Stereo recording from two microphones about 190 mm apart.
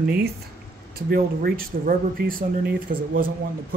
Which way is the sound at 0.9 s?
50° right (ahead or behind).